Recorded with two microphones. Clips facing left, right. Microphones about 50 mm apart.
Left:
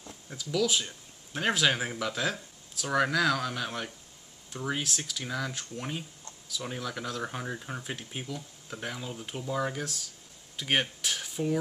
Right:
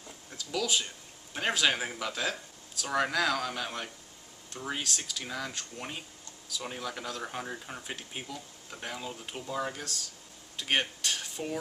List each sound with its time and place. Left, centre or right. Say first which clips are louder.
0.5 s speech: left 3 dB; centre